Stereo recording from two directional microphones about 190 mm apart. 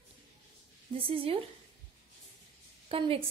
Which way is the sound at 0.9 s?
30° right (ahead or behind).